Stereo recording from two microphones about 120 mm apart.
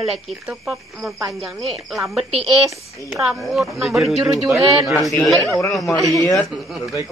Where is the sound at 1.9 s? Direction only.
Centre (ahead or behind).